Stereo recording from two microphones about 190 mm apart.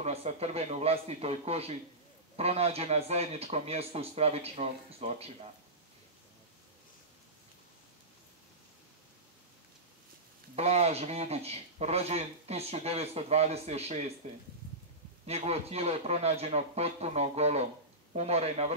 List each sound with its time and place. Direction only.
0.0 s a man's voice: 35° right (ahead or behind)
10.5 s a man's voice: 35° right (ahead or behind)
15.2 s a man's voice: 35° right (ahead or behind)